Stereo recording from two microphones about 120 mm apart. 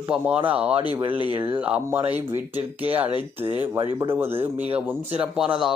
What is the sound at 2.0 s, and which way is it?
Speech, 55° right (ahead or behind).